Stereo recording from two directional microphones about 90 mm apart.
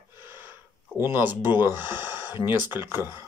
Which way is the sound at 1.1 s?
20° right (ahead or behind).